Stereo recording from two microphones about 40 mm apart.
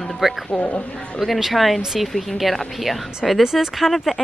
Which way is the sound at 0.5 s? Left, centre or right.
Left.